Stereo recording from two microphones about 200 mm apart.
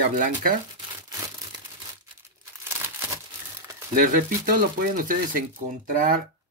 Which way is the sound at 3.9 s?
40° right (ahead or behind).